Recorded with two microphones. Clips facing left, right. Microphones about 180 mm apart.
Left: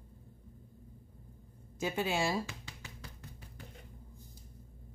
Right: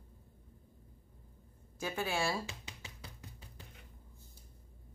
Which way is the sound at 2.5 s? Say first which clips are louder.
Left 1 dB; 20° right (ahead or behind).